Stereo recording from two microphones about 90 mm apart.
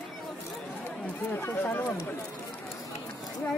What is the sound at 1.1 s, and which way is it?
Speech, 20° left (ahead or behind).